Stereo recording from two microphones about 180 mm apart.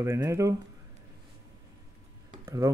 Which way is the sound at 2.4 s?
20° right (ahead or behind).